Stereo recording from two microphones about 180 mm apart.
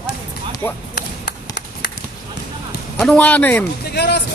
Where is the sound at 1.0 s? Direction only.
70° left (ahead or behind).